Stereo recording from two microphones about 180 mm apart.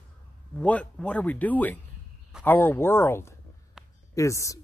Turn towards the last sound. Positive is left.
turn(degrees=15)  # may be behind; listen again after turning